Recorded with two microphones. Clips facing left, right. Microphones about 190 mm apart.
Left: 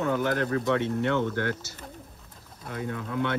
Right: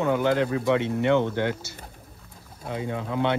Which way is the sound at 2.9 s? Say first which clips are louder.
Right 2 dB; 90° right.